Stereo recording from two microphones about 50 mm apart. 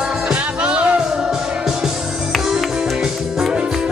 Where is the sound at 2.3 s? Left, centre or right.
Centre.